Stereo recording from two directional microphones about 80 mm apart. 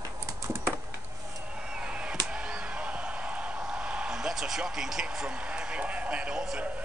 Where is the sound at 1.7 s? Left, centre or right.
Centre.